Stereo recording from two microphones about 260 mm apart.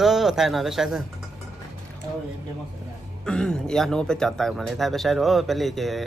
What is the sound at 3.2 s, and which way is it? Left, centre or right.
Speech, centre.